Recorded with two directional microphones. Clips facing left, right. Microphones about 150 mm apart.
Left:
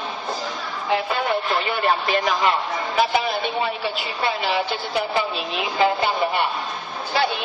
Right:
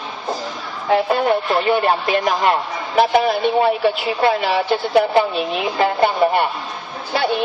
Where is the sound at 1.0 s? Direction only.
50° right (ahead or behind).